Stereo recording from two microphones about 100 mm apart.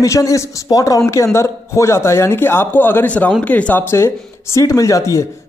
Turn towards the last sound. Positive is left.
turn(degrees=30)  # may be behind; listen again after turning